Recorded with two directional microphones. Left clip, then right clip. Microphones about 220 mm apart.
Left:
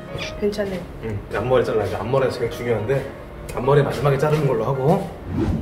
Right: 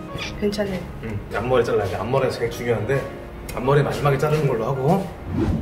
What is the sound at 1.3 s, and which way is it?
Speech, 10° left (ahead or behind).